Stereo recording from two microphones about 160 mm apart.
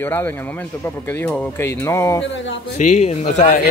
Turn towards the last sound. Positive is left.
turn(degrees=45)  # may be behind; listen again after turning